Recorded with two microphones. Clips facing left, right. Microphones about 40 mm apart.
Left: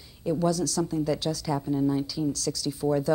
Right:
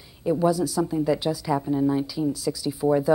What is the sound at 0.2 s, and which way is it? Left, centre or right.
Speech, centre.